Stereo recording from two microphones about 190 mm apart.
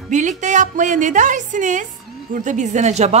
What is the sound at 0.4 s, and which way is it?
A woman's voice, 40° right (ahead or behind).